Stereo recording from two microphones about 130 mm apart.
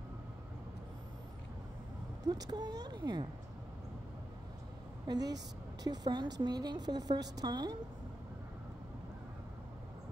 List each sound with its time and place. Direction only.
2.2 s a woman's voice: 30° right (ahead or behind)
5.0 s a woman's voice: 30° right (ahead or behind)